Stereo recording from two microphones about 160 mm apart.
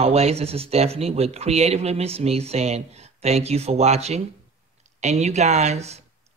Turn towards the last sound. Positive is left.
turn(degrees=-45)  # may be behind; listen again after turning